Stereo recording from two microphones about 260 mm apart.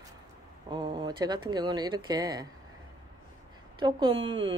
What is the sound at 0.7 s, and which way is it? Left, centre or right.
Speech, centre.